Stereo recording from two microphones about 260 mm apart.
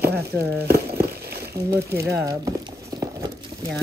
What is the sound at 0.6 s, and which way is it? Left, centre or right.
Crumpling, right.